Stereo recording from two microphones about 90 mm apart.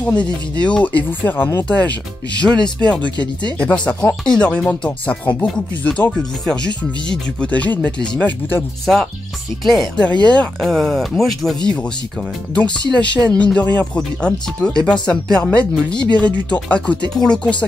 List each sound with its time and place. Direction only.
0.0 s speech: 15° left (ahead or behind)
10.2 s speech: 15° left (ahead or behind)